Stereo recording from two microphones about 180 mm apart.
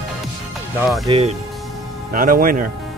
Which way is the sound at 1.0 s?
30° right (ahead or behind).